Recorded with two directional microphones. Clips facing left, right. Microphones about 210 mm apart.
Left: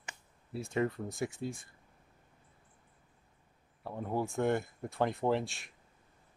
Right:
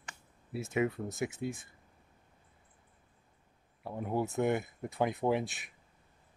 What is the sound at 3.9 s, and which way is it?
Speech, 10° right (ahead or behind).